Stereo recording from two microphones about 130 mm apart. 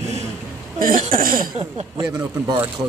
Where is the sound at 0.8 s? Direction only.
90° right.